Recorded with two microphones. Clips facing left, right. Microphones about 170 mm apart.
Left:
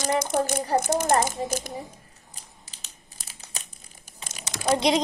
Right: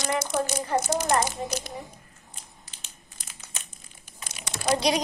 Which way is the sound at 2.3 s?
35° left (ahead or behind).